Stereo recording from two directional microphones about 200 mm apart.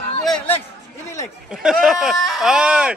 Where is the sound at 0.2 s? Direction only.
5° left (ahead or behind).